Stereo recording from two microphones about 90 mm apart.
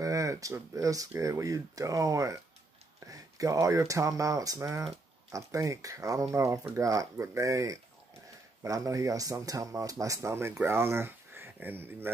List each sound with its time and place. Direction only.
0.0 s speech: 40° right (ahead or behind); by 12.1 s 25° right (ahead or behind)